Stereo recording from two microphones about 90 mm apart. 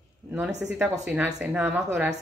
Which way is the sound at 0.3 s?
10° right (ahead or behind).